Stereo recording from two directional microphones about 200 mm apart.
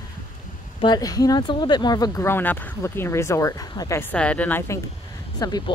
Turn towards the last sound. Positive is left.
turn(degrees=20)  # may be behind; listen again after turning